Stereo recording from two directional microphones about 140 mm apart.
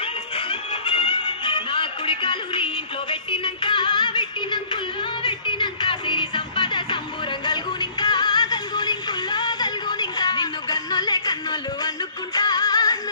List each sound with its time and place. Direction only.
0.0 s music: 40° left (ahead or behind)
12.4 s music: 30° left (ahead or behind)